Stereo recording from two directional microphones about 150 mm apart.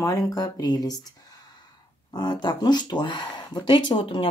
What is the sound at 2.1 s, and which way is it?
Speech, 30° left (ahead or behind).